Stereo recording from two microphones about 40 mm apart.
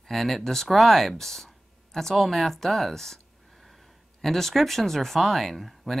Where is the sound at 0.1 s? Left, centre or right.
Centre.